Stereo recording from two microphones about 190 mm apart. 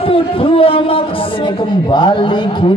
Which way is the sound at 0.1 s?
30° left (ahead or behind).